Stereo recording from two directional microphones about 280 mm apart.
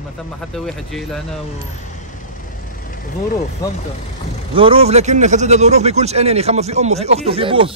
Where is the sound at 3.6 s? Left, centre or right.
Centre.